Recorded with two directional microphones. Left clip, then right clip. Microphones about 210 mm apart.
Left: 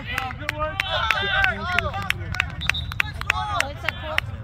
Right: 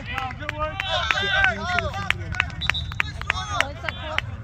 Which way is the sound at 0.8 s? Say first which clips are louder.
Even; 30° left (ahead or behind).